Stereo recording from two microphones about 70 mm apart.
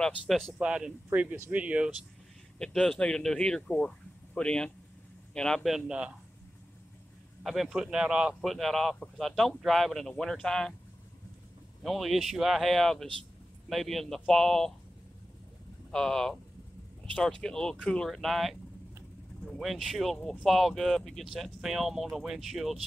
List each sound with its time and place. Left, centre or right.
0.5 s speech: centre
1.1 s speech: right
2.6 s speech: centre
5.9 s speech: centre
7.4 s speech: centre
8.4 s speech: centre
11.8 s speech: centre
15.9 s speech: centre